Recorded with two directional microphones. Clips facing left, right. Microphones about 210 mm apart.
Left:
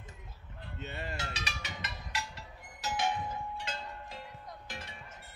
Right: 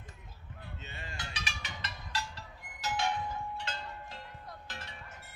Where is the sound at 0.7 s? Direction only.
65° left (ahead or behind).